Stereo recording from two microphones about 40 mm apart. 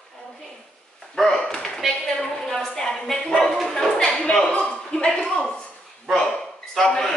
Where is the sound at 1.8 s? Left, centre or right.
Centre.